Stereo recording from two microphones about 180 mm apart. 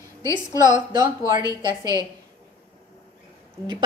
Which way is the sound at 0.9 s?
20° right (ahead or behind).